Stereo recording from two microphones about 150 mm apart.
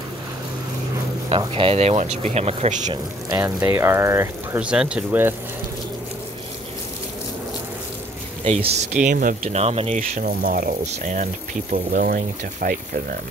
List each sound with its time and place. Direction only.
1.3 s speech: 40° right (ahead or behind)
2.9 s speech: 30° right (ahead or behind)
3.6 s speech: 15° right (ahead or behind)
4.6 s speech: 5° right (ahead or behind)
8.5 s speech: 45° right (ahead or behind)
9.0 s speech: 65° right (ahead or behind)
9.4 s speech: 45° right (ahead or behind)
11.7 s speech: 75° right (ahead or behind)